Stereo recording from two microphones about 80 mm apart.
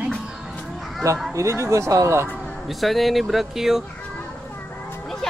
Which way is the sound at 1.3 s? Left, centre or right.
Right.